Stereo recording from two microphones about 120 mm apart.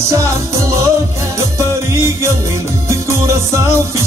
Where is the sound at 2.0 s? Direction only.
20° right (ahead or behind).